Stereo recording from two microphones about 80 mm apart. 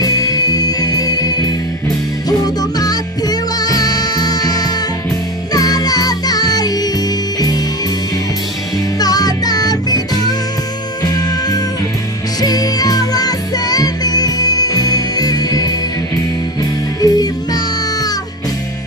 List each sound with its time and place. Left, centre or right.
0.0 s music: left
9.0 s music: left
17.0 s music: left